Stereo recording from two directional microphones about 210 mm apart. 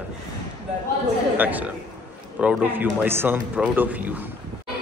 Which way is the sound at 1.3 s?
10° right (ahead or behind).